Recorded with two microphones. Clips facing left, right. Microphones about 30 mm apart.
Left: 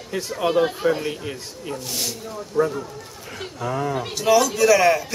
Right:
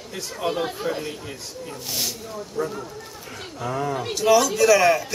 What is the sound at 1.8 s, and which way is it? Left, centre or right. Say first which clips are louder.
Speech: right 1 dB; centre.